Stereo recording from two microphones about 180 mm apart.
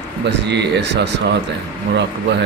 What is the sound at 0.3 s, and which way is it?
Speech, 70° right (ahead or behind).